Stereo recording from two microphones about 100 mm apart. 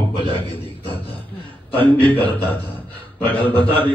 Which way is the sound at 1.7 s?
20° left (ahead or behind).